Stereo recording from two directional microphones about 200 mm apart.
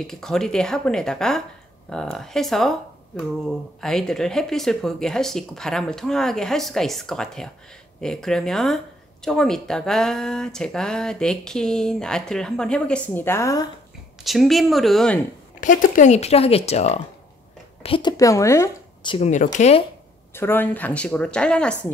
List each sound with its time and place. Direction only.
0.0 s speech: 5° left (ahead or behind)
14.2 s speech: centre (ahead or behind)
15.6 s speech: 40° left (ahead or behind); by 19.1 s 15° left (ahead or behind)
19.1 s speech: 35° left (ahead or behind)
20.3 s speech: 10° left (ahead or behind)